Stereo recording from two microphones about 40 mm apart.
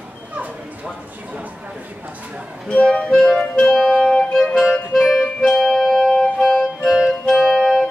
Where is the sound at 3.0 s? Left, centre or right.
Centre.